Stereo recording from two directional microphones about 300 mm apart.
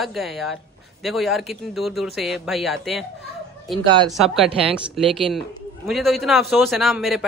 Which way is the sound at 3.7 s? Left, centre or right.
Centre.